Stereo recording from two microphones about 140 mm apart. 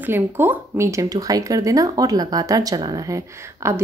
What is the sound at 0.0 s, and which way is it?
Speech, 15° right (ahead or behind).